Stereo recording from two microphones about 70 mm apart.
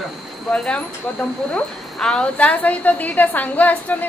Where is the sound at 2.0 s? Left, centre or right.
Centre.